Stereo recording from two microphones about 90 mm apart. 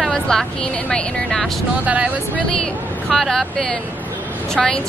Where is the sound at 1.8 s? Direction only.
15° right (ahead or behind).